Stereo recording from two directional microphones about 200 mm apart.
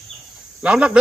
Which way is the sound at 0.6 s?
5° right (ahead or behind).